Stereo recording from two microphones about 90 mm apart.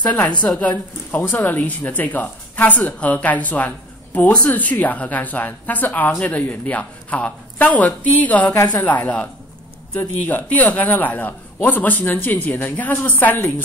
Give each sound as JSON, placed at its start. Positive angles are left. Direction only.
{"t": 0.0, "sound": "a man's voice", "side_deg": 15}